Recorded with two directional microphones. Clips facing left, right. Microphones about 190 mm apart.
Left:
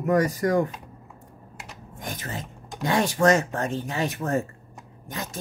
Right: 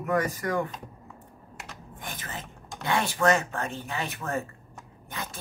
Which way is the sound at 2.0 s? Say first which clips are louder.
Left 5 dB; 40° left (ahead or behind).